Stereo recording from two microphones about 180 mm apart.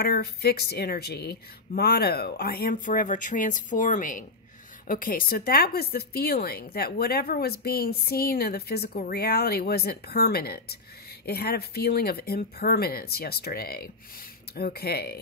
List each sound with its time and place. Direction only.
0.0 s speech: 60° left (ahead or behind)